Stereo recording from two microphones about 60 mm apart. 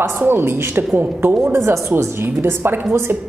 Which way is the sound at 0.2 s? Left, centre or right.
Right.